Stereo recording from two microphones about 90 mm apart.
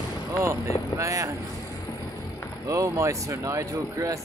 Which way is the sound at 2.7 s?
35° right (ahead or behind).